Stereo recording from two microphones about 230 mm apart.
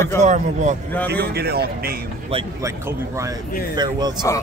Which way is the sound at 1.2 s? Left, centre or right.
Right.